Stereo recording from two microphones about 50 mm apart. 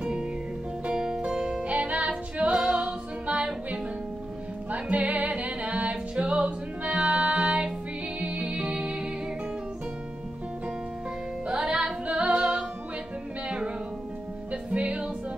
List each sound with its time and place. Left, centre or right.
0.0 s music: centre
1.7 s female singing: right
4.6 s music: right
11.4 s music: centre
14.5 s music: right